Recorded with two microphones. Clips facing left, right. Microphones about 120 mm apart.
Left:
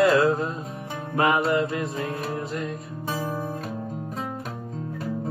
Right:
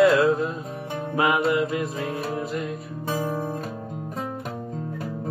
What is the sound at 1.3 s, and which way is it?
Mantra, 15° right (ahead or behind).